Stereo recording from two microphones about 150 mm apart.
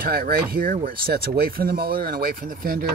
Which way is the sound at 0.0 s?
80° right.